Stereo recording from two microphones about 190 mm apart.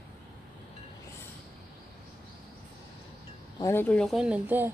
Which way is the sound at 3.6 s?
10° left (ahead or behind).